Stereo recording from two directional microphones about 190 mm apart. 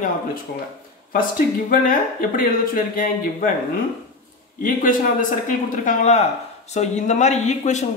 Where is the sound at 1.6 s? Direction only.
45° left (ahead or behind).